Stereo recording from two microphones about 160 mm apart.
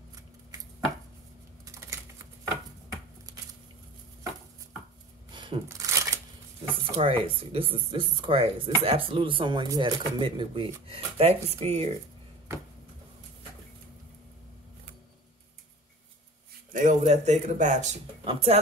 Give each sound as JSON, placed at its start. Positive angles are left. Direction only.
{"t": 1.7, "sound": "typing", "side_deg": -20}
{"t": 5.3, "sound": "shuffling cards", "side_deg": -30}
{"t": 5.9, "sound": "a sound", "side_deg": -20}
{"t": 7.0, "sound": "speech", "side_deg": -35}
{"t": 16.7, "sound": "speech", "side_deg": -55}
{"t": 18.2, "sound": "speech", "side_deg": -35}